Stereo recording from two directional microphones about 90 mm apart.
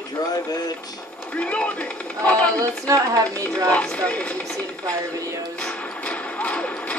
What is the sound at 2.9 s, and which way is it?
Speech, 40° right (ahead or behind).